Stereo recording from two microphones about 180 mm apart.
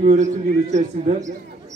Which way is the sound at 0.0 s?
40° right (ahead or behind).